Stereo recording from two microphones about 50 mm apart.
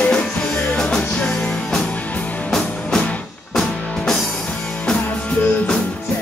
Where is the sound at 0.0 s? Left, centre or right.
Left.